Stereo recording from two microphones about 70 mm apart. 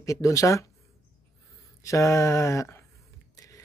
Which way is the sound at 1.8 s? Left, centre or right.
Left.